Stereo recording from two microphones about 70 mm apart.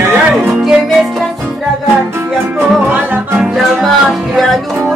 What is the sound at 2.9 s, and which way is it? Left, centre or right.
Music, right.